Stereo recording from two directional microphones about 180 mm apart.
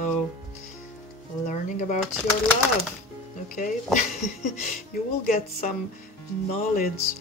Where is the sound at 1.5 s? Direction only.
40° left (ahead or behind).